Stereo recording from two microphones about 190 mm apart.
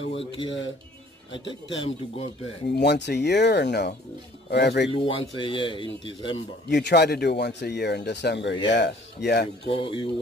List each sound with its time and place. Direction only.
0.0 s speech: 30° left (ahead or behind)
1.8 s speech: 30° left (ahead or behind)
2.7 s speech: 65° left (ahead or behind)
4.9 s speech: 30° left (ahead or behind)
6.7 s speech: 60° left (ahead or behind)
9.7 s speech: 25° left (ahead or behind)